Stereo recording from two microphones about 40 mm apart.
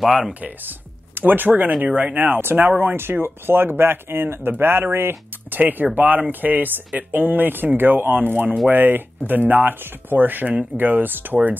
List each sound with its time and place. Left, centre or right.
0.0 s speech: centre
0.7 s chopping: right
2.0 s speech: right
2.4 s speech: right
5.5 s speech: right
8.3 s speech: right
8.6 s speech: right